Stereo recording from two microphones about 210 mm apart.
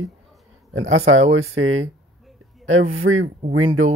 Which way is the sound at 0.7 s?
75° right (ahead or behind).